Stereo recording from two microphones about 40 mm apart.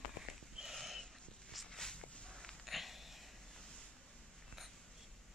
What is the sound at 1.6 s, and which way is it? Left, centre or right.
Walk, centre.